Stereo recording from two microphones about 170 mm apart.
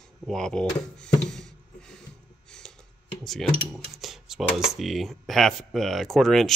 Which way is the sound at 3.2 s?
Centre (ahead or behind).